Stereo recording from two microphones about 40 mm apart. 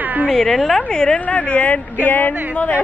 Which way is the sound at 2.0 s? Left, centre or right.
Left.